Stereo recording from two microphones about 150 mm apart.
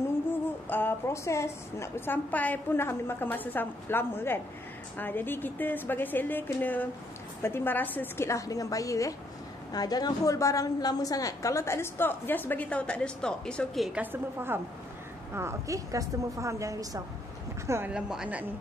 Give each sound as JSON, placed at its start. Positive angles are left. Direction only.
{"t": 0.3, "sound": "a woman's voice", "side_deg": 15}
{"t": 13.9, "sound": "a woman's voice", "side_deg": -15}
{"t": 17.9, "sound": "a woman's voice", "side_deg": -5}